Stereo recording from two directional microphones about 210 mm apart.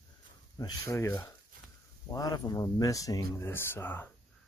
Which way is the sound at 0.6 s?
15° left (ahead or behind).